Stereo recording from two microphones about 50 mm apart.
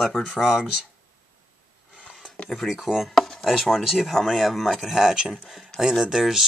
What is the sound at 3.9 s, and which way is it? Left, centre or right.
Speech, centre.